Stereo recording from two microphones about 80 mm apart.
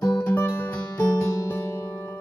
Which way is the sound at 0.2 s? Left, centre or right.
Left.